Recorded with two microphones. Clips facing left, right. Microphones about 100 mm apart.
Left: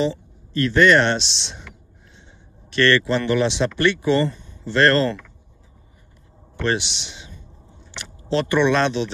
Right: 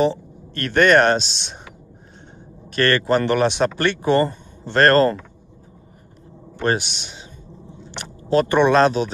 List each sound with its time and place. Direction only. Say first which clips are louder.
0.0 s speech: right 4 dB; 60° right (ahead or behind)
2.7 s speech: even; 45° right (ahead or behind)
6.6 s speech: right 2 dB; 45° right (ahead or behind)